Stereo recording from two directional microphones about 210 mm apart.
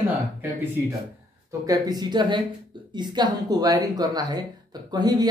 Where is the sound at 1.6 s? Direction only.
15° right (ahead or behind).